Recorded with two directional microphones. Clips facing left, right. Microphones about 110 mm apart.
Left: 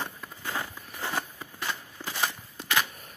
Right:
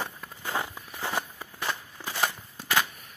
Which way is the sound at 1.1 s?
10° right (ahead or behind).